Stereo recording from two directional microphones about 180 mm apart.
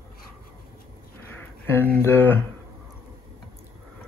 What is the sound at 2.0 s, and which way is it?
Speech, 10° left (ahead or behind).